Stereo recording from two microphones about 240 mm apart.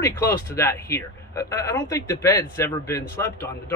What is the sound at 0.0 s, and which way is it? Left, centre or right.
Speech, centre.